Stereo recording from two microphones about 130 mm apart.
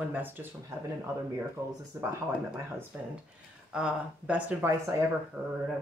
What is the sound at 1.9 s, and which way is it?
Speech, 20° right (ahead or behind).